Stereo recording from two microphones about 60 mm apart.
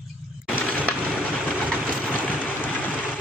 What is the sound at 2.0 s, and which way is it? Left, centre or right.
Vehicle, left.